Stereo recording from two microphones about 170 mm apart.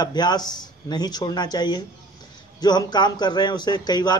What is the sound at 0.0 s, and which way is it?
A man's voice, 25° left (ahead or behind).